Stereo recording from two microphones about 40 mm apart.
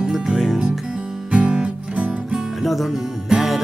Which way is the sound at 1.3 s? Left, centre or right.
Right.